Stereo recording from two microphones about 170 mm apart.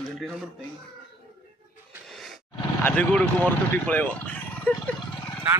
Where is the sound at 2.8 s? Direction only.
10° left (ahead or behind).